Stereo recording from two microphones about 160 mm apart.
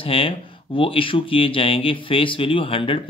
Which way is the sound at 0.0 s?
35° left (ahead or behind).